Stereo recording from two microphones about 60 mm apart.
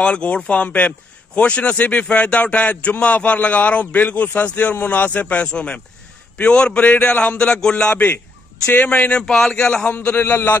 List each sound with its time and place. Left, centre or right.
0.0 s a man's voice: centre
7.9 s a man's voice: left
8.8 s a man's voice: left
9.2 s a man's voice: centre
9.5 s a man's voice: centre
10.1 s a man's voice: left